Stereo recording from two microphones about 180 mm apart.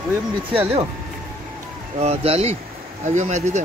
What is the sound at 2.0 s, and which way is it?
Speech, 35° right (ahead or behind).